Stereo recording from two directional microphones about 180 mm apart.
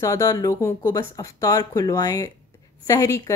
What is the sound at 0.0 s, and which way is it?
Speech, 20° left (ahead or behind).